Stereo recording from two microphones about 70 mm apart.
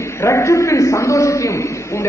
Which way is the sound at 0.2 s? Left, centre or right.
Left.